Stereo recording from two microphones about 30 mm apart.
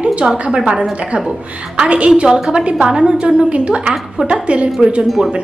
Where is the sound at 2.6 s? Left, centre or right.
Right.